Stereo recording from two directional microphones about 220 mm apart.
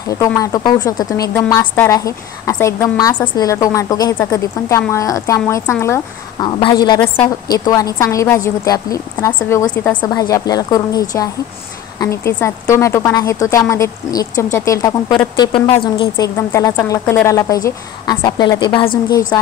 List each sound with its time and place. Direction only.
0.2 s a woman's voice: 15° left (ahead or behind)